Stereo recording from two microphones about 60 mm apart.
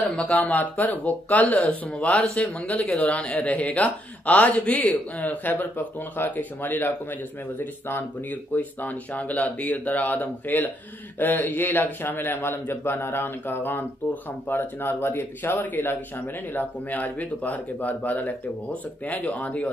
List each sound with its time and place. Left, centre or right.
0.2 s a man's voice: left